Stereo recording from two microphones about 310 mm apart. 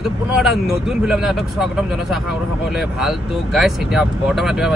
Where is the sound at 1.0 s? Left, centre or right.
Centre.